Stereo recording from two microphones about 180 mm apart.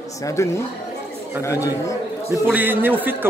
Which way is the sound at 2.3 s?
10° right (ahead or behind).